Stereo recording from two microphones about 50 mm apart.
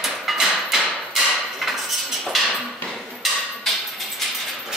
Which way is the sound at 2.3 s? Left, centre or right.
Centre.